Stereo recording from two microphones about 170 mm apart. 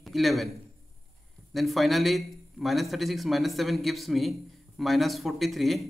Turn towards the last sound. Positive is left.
turn(degrees=0)  # may be behind; listen again after turning